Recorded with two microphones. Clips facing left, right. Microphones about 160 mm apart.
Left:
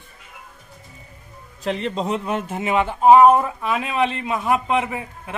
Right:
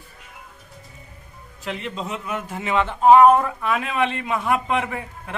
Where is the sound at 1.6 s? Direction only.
35° left (ahead or behind).